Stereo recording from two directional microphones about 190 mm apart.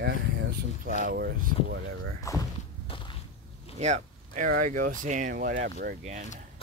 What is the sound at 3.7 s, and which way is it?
Speech, 40° right (ahead or behind).